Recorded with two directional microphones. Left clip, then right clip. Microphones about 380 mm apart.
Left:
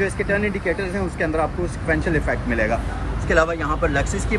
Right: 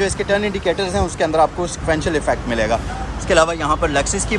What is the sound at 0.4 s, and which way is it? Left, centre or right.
Speech, right.